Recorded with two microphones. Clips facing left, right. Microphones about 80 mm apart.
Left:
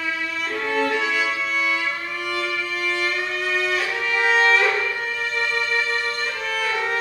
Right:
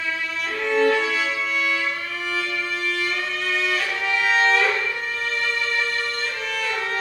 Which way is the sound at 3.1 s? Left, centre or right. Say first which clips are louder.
Left 1 dB; centre.